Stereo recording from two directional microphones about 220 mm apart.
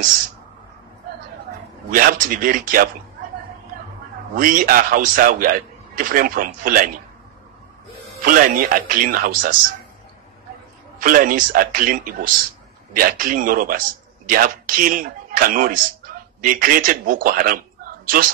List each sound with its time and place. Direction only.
1.9 s speech: 40° right (ahead or behind)
4.4 s speech: 40° right (ahead or behind)
8.3 s speech: 40° right (ahead or behind)
11.0 s a man's voice: 40° right (ahead or behind)